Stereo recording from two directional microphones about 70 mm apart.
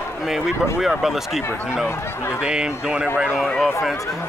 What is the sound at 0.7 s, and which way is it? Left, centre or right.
Speech, centre.